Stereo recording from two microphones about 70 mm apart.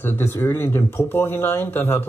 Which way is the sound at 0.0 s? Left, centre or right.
Left.